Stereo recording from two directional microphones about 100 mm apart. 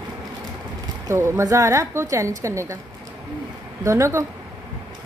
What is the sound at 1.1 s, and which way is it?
Speech, 30° right (ahead or behind).